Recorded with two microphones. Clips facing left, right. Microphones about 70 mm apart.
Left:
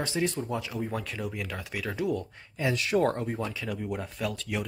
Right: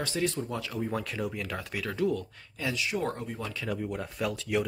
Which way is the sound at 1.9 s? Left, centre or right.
Centre.